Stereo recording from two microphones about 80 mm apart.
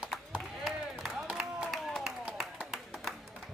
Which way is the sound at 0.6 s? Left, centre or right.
Centre.